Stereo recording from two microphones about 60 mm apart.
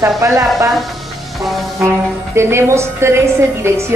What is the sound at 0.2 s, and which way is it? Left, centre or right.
Speech, right.